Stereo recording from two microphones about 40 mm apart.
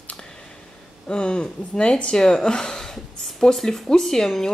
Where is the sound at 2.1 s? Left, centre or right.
Centre.